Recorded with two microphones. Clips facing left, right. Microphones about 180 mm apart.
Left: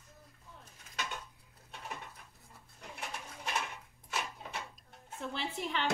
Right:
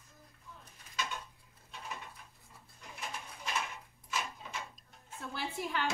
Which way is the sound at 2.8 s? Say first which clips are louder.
Left 1 dB; 65° left (ahead or behind).